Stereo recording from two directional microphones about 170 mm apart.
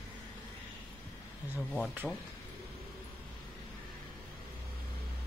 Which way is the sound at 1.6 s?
Centre (ahead or behind).